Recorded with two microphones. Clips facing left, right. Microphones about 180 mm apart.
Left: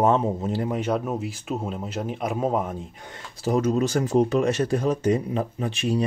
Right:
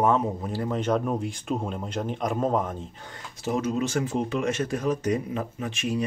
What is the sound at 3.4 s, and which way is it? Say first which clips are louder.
Speech: left 4 dB; 40° left (ahead or behind).